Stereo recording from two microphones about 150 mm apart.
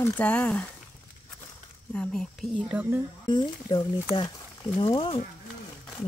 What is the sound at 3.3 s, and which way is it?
Speech, 30° left (ahead or behind).